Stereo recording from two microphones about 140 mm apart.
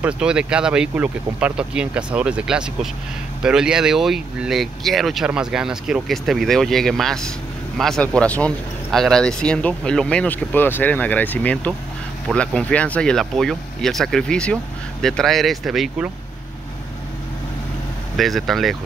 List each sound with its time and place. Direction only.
0.0 s speech: 5° right (ahead or behind)
18.1 s speech: centre (ahead or behind)